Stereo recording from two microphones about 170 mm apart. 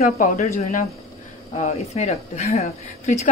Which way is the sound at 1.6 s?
40° left (ahead or behind).